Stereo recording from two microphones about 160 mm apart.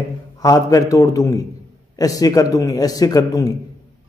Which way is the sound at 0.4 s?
25° left (ahead or behind).